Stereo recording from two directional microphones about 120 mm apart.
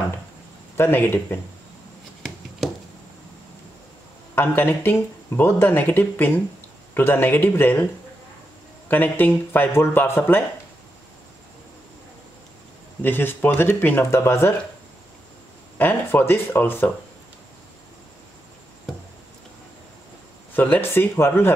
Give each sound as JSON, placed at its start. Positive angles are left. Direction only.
{"t": 0.7, "sound": "speech", "side_deg": 20}
{"t": 4.4, "sound": "speech", "side_deg": 15}
{"t": 8.8, "sound": "speech", "side_deg": 15}
{"t": 13.0, "sound": "speech", "side_deg": 15}
{"t": 15.8, "sound": "speech", "side_deg": 15}
{"t": 20.5, "sound": "speech", "side_deg": 15}